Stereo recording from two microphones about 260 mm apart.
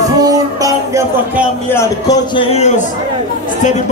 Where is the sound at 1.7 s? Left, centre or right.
Centre.